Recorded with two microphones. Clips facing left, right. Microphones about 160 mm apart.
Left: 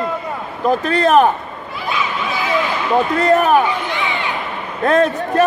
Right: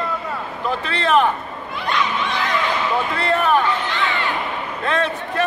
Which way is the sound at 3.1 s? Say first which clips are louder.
Left 6 dB; 45° left (ahead or behind).